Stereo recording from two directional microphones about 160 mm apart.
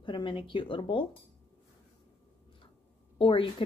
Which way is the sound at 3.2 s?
30° left (ahead or behind).